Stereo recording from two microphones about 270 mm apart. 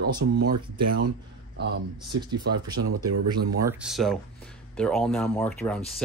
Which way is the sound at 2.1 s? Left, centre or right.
Right.